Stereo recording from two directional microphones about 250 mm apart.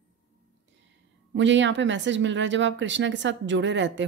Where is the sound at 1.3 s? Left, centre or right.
Right.